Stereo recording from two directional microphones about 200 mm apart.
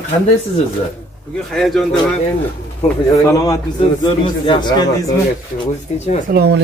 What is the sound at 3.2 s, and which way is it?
A man's voice, 15° left (ahead or behind).